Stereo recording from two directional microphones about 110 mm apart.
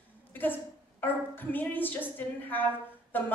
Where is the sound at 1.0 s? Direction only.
15° left (ahead or behind).